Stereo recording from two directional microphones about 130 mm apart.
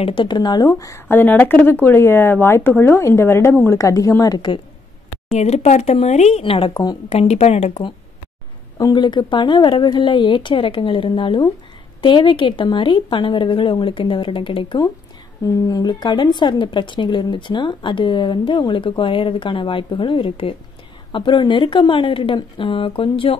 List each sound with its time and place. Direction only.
0.0 s speech: 40° left (ahead or behind)
5.3 s speech: 55° left (ahead or behind); by 7.0 s 35° left (ahead or behind)
7.1 s speech: 55° left (ahead or behind)
8.9 s a woman's voice: 35° left (ahead or behind)
15.4 s a woman's voice: 30° left (ahead or behind)